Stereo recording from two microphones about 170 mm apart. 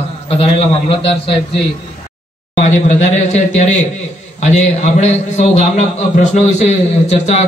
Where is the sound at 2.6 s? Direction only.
40° left (ahead or behind).